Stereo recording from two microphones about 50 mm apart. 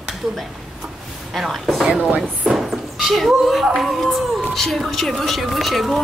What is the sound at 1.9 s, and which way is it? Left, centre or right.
Chopping, right.